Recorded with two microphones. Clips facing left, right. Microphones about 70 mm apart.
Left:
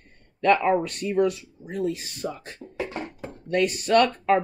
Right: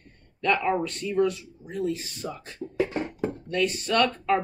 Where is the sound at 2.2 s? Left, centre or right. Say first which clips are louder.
Left 3 dB; centre.